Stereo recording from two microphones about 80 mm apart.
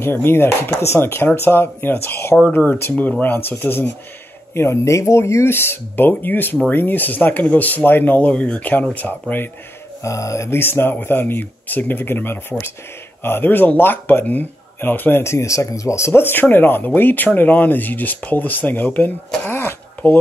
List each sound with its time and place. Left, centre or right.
0.0 s speech: left
4.6 s speech: left
10.0 s speech: left
16.1 s speech: left